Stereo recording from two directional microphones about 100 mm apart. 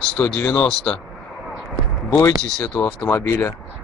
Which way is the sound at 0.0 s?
10° left (ahead or behind).